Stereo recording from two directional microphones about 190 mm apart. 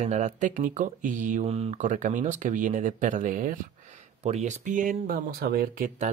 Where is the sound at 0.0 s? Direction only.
35° right (ahead or behind).